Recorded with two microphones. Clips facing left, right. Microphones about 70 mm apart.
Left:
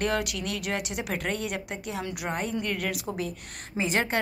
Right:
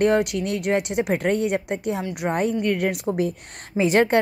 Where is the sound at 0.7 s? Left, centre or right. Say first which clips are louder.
Right 11 dB; right.